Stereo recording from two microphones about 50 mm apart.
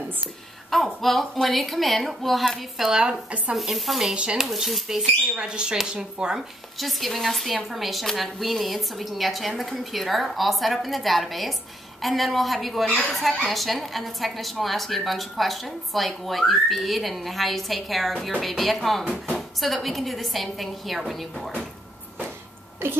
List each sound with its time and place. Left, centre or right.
0.7 s a woman's voice: centre
2.8 s speech: centre
3.5 s a woman's voice: centre
4.1 s speech: right
4.4 s a woman's voice: centre
6.8 s a woman's voice: centre
22.8 s a woman's voice: right